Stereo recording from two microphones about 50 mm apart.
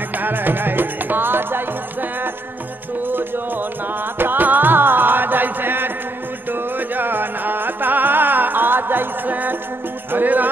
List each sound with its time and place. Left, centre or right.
0.1 s music: right